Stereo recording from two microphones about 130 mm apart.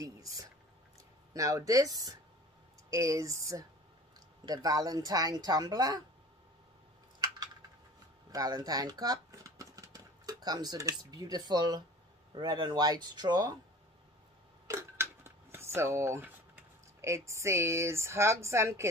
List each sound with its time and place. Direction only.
0.0 s speech: 25° right (ahead or behind)
8.3 s speech: 30° right (ahead or behind)
14.7 s a sound: 20° right (ahead or behind)
17.0 s speech: 20° right (ahead or behind)